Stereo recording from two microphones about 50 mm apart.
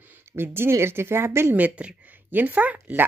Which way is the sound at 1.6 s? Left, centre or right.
Right.